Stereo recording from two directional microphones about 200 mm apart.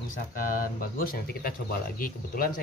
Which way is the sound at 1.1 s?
45° left (ahead or behind).